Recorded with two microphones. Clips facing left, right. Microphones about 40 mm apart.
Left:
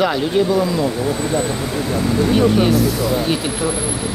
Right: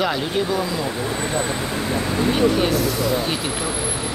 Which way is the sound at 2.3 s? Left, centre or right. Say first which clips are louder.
Left 4 dB; centre.